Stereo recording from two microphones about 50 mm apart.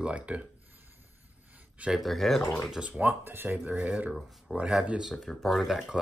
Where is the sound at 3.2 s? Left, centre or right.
Right.